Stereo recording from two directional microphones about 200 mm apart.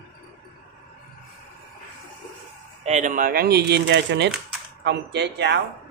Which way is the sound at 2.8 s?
35° right (ahead or behind).